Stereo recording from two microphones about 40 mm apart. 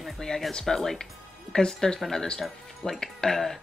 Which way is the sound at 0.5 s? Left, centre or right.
Centre.